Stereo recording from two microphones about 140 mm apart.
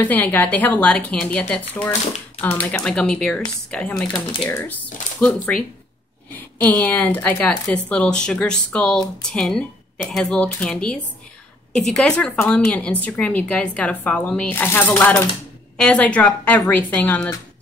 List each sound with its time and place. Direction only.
0.0 s speech: 15° left (ahead or behind)
2.7 s speech: 5° left (ahead or behind)
4.1 s speech: 35° left (ahead or behind)
4.5 s speech: 15° left (ahead or behind)